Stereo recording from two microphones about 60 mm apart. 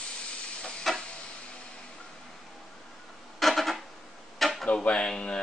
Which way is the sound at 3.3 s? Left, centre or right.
Centre.